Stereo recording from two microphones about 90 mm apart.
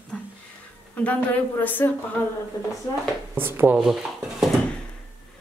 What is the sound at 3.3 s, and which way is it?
Speech, 25° right (ahead or behind).